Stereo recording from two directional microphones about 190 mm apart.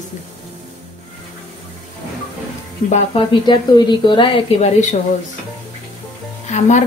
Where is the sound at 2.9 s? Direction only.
25° left (ahead or behind).